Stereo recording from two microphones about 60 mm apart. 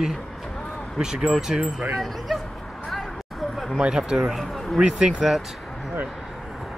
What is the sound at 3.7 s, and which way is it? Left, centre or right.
Speech, centre.